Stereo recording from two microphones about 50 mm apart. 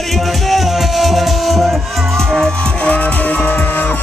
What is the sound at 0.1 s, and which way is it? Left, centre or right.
Music, centre.